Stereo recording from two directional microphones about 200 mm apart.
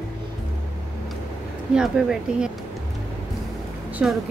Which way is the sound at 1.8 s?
5° right (ahead or behind).